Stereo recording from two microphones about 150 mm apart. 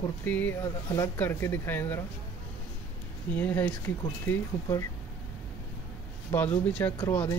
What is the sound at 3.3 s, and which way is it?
Speech, 10° left (ahead or behind).